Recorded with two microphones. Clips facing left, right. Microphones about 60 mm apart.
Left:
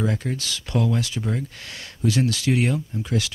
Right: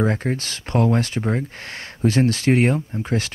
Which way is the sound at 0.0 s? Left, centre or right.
Right.